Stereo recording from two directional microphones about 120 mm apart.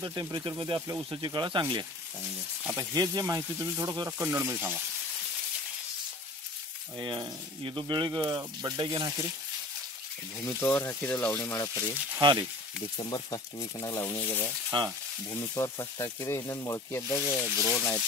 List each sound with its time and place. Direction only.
0.0 s speech: 35° right (ahead or behind); by 4.8 s 15° right (ahead or behind)
7.0 s speech: 40° right (ahead or behind)
10.4 s speech: 20° left (ahead or behind)
12.2 s speech: 40° right (ahead or behind)
12.9 s speech: 35° left (ahead or behind); by 14.5 s 20° left (ahead or behind)
14.7 s speech: 40° right (ahead or behind)
15.3 s speech: 20° left (ahead or behind)
17.6 s speech: 5° left (ahead or behind)